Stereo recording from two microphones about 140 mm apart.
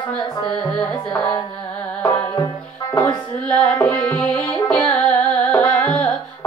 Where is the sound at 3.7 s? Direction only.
15° left (ahead or behind).